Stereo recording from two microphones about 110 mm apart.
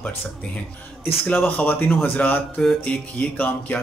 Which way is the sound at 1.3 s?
15° left (ahead or behind).